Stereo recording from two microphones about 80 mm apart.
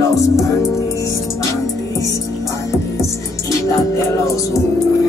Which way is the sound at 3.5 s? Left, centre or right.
Left.